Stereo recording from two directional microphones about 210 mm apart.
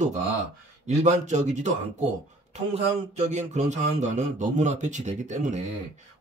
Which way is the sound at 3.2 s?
35° right (ahead or behind).